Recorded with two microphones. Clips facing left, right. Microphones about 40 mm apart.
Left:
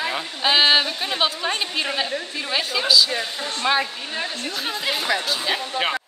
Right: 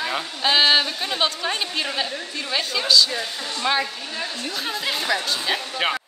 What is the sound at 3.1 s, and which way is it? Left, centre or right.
Speech, centre.